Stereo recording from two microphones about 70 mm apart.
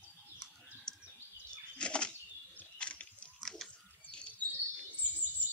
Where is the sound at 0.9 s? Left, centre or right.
Centre.